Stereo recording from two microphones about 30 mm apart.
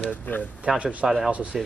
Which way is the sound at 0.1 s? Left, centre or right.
Left.